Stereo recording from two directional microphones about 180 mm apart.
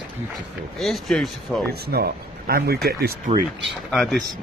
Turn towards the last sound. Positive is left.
turn(degrees=0)  # may be behind; listen again after turning